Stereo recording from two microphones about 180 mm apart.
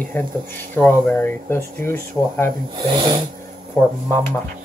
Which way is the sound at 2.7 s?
25° right (ahead or behind).